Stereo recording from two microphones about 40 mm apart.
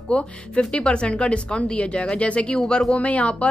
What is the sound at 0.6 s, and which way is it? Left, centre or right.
Speech, left.